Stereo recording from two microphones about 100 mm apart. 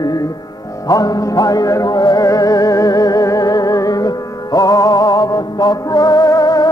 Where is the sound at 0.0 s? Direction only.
40° left (ahead or behind).